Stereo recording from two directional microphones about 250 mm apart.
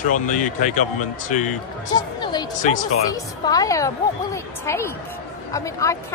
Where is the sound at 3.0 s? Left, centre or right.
Centre.